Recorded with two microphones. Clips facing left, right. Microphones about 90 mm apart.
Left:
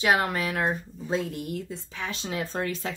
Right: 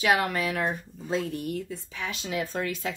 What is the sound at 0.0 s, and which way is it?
Speech, 25° left (ahead or behind).